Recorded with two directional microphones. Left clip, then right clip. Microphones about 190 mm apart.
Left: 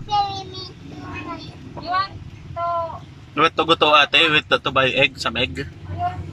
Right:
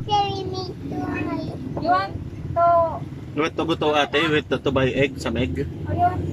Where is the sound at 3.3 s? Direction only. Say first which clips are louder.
Left 6 dB; 65° left (ahead or behind).